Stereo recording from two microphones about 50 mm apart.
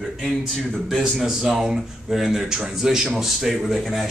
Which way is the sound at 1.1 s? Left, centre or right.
Centre.